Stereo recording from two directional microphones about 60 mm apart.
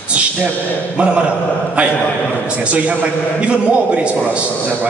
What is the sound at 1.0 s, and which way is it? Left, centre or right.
Mantra, centre.